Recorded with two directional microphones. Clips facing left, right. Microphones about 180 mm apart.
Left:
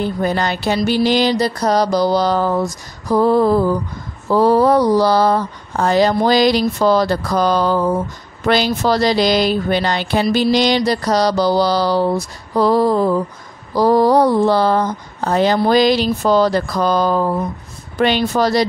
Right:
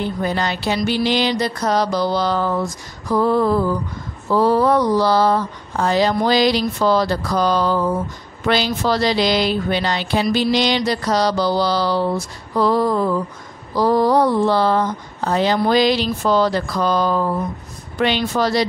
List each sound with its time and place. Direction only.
0.0 s speech: 50° left (ahead or behind)
0.7 s mantra: 40° left (ahead or behind)
6.8 s speech: 45° left (ahead or behind)
10.5 s mantra: 40° left (ahead or behind)
15.7 s speech: 45° left (ahead or behind)
17.9 s mantra: 45° left (ahead or behind)